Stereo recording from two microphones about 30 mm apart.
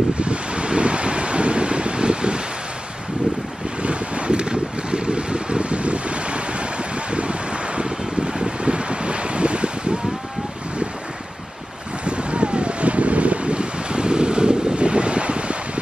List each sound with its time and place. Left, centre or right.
0.2 s wind: right
3.8 s boat: right
8.3 s wind: right
12.0 s wind: right